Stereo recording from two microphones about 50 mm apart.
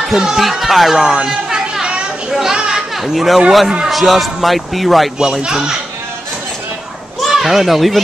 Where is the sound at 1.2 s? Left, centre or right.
Centre.